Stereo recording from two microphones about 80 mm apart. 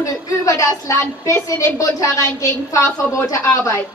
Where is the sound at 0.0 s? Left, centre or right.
Left.